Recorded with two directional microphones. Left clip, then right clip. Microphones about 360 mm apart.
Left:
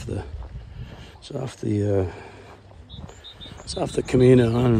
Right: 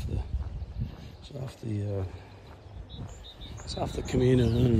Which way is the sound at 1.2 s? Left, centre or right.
Centre.